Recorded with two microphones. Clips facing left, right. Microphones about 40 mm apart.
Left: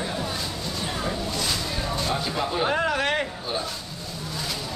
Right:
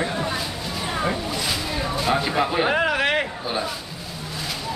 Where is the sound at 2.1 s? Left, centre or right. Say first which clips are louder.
Right 8 dB; right.